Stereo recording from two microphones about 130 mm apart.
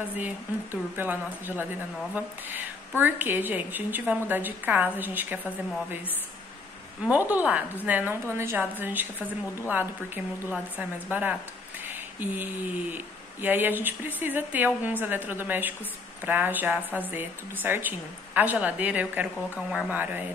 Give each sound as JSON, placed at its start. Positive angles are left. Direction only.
{"t": 0.2, "sound": "speech", "side_deg": -15}
{"t": 3.0, "sound": "speech", "side_deg": -15}
{"t": 7.1, "sound": "speech", "side_deg": -10}